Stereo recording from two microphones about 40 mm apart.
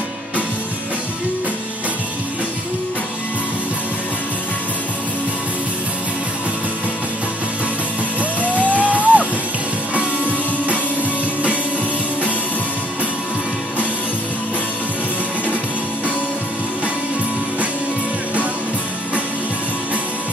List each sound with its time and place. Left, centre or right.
8.2 s music: right